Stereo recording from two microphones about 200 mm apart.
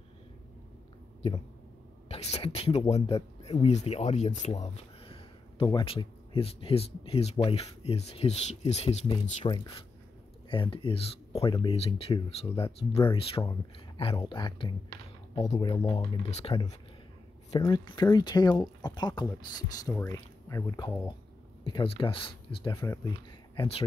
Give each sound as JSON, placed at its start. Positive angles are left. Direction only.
{"t": 2.0, "sound": "speech", "side_deg": 30}
{"t": 17.6, "sound": "speech", "side_deg": 20}
{"t": 22.8, "sound": "speech", "side_deg": 15}
{"t": 23.5, "sound": "speech", "side_deg": 25}